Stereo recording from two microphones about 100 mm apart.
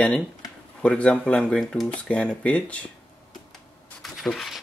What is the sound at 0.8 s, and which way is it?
Speech, 10° left (ahead or behind).